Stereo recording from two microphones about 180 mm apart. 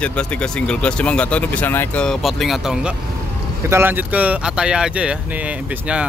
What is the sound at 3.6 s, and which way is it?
Speech, 10° right (ahead or behind).